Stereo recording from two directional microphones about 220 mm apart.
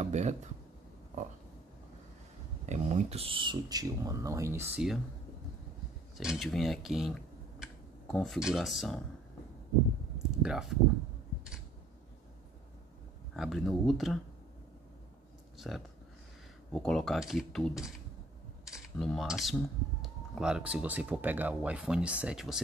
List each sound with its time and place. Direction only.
0.0 s a sound: 30° right (ahead or behind)
2.6 s speech: 30° right (ahead or behind); by 4.9 s 10° right (ahead or behind)
6.1 s speech: centre (ahead or behind)
10.1 s speech: centre (ahead or behind)
13.4 s speech: centre (ahead or behind)
15.5 s speech: centre (ahead or behind)
18.7 s cutlery: centre (ahead or behind)
19.5 s speech: centre (ahead or behind)